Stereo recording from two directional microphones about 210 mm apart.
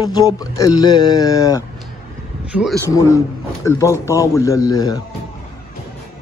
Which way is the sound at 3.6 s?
15° left (ahead or behind).